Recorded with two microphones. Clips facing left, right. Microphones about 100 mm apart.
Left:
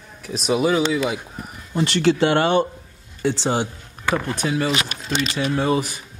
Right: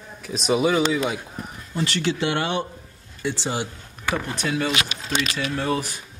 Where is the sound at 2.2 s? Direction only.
60° left (ahead or behind).